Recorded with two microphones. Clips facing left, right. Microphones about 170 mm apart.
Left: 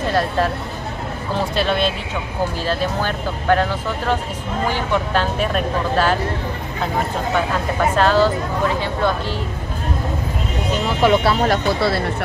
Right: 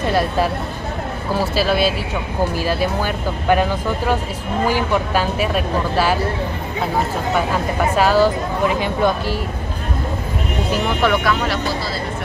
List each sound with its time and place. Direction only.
0.1 s speech: 10° right (ahead or behind)
7.9 s speech: 10° right (ahead or behind)
11.0 s speech: 15° left (ahead or behind)
11.4 s speech: 55° left (ahead or behind)